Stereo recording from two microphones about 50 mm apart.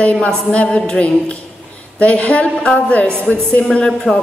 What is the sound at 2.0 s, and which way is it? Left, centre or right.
A woman's voice, left.